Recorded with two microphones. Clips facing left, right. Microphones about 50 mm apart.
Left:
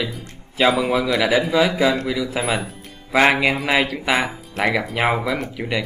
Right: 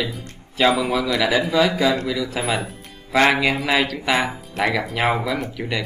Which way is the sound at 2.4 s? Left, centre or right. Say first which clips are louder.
Left 1 dB; centre.